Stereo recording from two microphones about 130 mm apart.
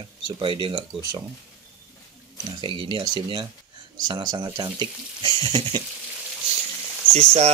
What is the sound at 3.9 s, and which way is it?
Speech, 30° right (ahead or behind).